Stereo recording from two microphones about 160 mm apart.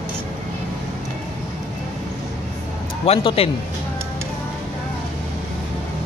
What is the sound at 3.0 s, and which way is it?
Speech, 40° left (ahead or behind).